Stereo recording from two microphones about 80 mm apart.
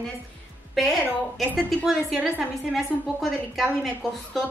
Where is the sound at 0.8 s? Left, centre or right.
Centre.